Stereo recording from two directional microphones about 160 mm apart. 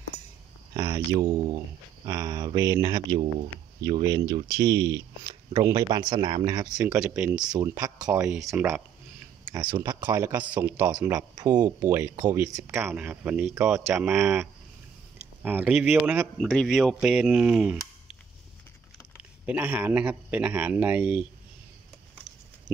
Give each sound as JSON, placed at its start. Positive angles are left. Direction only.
{"t": 0.7, "sound": "speech", "side_deg": -25}
{"t": 6.8, "sound": "speech", "side_deg": -10}
{"t": 7.5, "sound": "speech", "side_deg": -20}
{"t": 8.0, "sound": "speech", "side_deg": -10}
{"t": 9.7, "sound": "speech", "side_deg": -25}
{"t": 10.0, "sound": "speech", "side_deg": -15}
{"t": 11.1, "sound": "speech", "side_deg": -20}
{"t": 15.4, "sound": "speech", "side_deg": -10}
{"t": 16.3, "sound": "speech", "side_deg": 0}
{"t": 19.4, "sound": "speech", "side_deg": -10}